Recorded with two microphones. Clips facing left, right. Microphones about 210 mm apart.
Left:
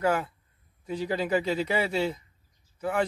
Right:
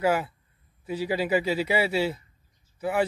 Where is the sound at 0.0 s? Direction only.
10° right (ahead or behind).